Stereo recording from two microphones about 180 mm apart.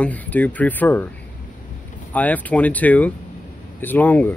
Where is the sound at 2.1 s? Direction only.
10° left (ahead or behind).